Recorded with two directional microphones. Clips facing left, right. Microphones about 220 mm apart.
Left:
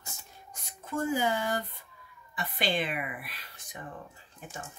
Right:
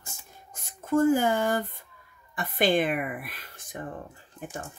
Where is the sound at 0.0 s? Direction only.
50° right (ahead or behind).